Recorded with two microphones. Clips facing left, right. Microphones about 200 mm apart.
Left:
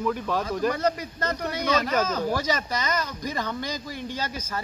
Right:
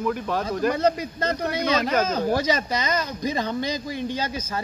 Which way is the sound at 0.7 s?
25° right (ahead or behind).